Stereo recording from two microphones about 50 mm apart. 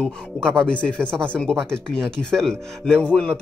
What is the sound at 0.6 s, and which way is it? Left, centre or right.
Speech, left.